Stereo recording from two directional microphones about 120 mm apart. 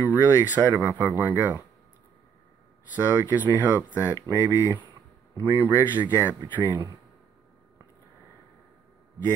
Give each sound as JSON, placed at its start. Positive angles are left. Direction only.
{"t": 0.0, "sound": "speech", "side_deg": -15}
{"t": 2.9, "sound": "speech", "side_deg": -15}
{"t": 4.4, "sound": "speech", "side_deg": 25}
{"t": 5.6, "sound": "speech", "side_deg": -15}
{"t": 6.6, "sound": "speech", "side_deg": -40}